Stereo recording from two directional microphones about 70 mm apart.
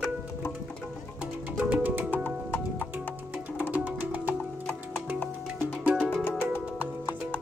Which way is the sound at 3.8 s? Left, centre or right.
Right.